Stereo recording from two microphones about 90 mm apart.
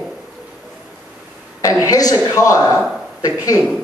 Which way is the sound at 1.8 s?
40° left (ahead or behind).